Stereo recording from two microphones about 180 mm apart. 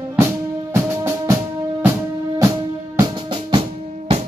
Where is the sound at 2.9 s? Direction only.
25° right (ahead or behind).